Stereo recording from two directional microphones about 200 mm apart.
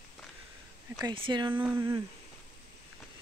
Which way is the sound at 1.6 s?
10° right (ahead or behind).